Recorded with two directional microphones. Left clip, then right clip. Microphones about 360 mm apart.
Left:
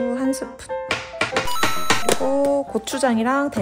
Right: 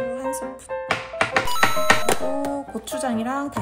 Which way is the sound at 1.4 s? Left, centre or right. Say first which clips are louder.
Right 2 dB; centre.